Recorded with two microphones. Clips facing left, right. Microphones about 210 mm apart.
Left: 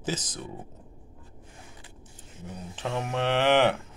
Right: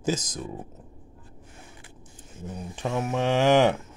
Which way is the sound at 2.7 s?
10° right (ahead or behind).